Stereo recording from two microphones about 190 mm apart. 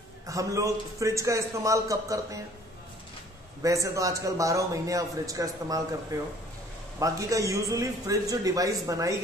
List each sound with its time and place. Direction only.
0.3 s a man's voice: 15° right (ahead or behind)
3.6 s a man's voice: 15° right (ahead or behind)
7.0 s a man's voice: 15° right (ahead or behind)